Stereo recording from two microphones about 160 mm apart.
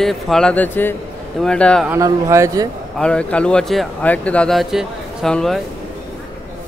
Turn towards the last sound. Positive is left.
turn(degrees=5)  # may be behind; listen again after turning